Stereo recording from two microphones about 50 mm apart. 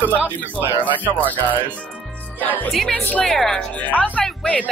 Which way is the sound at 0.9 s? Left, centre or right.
Left.